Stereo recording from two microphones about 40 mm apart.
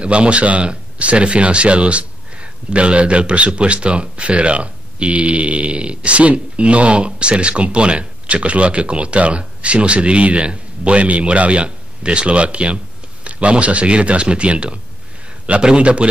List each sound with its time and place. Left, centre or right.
0.0 s speech: right